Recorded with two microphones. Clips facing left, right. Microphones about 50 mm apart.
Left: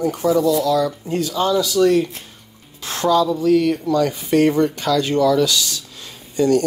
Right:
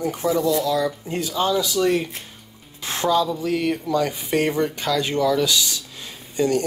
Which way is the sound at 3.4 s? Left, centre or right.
Centre.